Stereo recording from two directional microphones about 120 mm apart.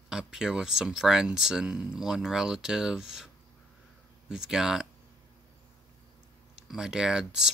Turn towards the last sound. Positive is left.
turn(degrees=-5)  # may be behind; listen again after turning